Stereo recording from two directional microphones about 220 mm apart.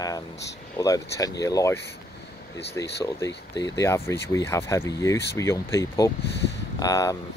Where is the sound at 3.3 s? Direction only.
50° left (ahead or behind).